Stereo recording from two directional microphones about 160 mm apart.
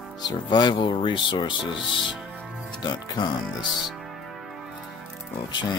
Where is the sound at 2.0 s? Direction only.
Centre (ahead or behind).